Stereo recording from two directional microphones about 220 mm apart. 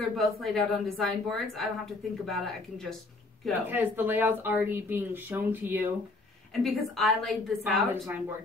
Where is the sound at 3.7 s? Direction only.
10° right (ahead or behind).